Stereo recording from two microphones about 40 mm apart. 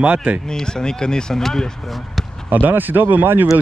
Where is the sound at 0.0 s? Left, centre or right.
Right.